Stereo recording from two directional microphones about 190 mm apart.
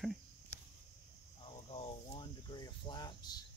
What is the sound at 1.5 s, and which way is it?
Speech, 30° left (ahead or behind).